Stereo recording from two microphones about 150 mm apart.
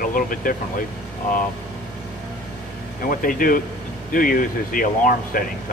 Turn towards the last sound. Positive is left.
turn(degrees=65)  # may be behind; listen again after turning